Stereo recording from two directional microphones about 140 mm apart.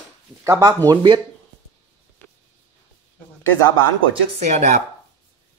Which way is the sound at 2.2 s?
15° left (ahead or behind).